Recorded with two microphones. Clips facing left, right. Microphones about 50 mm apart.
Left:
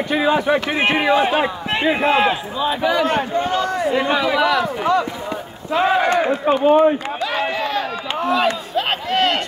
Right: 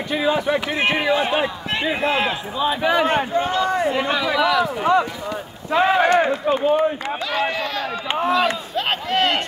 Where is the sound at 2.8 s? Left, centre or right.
Right.